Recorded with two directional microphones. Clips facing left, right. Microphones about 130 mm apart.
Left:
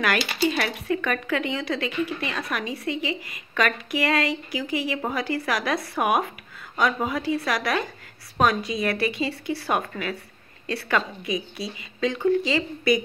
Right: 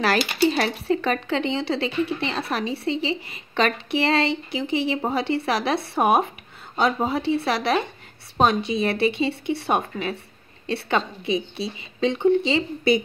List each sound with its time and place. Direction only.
0.5 s speech: 30° right (ahead or behind)